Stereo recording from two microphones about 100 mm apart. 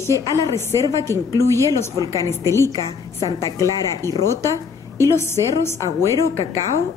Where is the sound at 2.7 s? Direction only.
35° left (ahead or behind).